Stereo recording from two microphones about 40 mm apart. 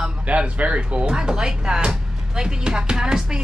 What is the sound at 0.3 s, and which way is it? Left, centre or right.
Speech, right.